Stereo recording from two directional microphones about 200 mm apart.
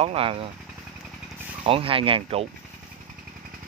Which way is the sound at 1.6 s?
25° right (ahead or behind).